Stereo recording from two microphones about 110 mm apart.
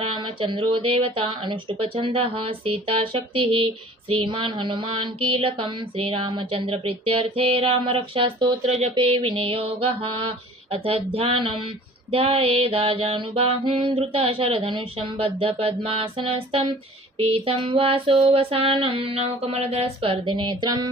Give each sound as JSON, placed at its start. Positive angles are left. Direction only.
{"t": 0.0, "sound": "speech", "side_deg": -50}
{"t": 2.1, "sound": "mantra", "side_deg": -55}
{"t": 8.9, "sound": "mantra", "side_deg": -55}